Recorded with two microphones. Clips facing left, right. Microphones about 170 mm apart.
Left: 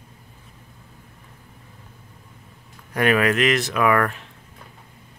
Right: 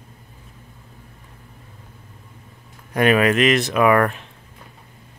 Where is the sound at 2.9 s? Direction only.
20° right (ahead or behind).